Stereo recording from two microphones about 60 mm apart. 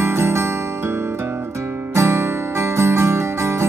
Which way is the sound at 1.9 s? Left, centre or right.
Right.